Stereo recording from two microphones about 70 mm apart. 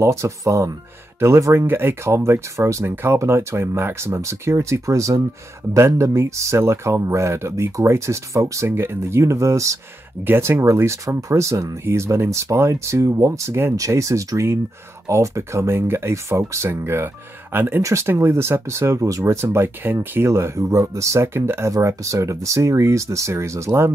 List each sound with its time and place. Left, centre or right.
0.0 s speech: right
1.7 s speech: right
2.1 s speech: right
8.6 s speech: right
10.2 s speech: right
13.5 s speech: right
13.7 s speech: right
21.8 s speech: right